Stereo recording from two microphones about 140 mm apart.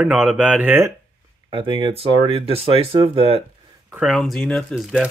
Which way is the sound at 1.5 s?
35° right (ahead or behind).